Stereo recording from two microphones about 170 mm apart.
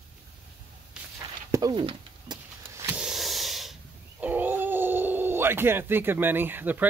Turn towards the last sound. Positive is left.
turn(degrees=-10)  # may be behind; listen again after turning